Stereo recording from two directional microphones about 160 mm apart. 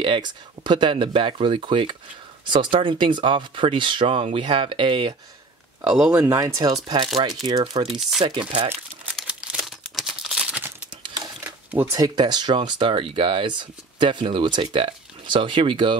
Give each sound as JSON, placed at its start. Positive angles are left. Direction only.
{"t": 0.0, "sound": "speech", "side_deg": -30}
{"t": 5.9, "sound": "speech", "side_deg": -5}
{"t": 6.2, "sound": "speech", "side_deg": -20}
{"t": 7.9, "sound": "speech", "side_deg": -5}
{"t": 9.1, "sound": "crumpling", "side_deg": -5}
{"t": 11.7, "sound": "speech", "side_deg": -15}